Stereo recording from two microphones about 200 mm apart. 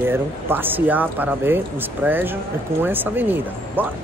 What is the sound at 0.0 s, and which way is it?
Speech, 10° right (ahead or behind).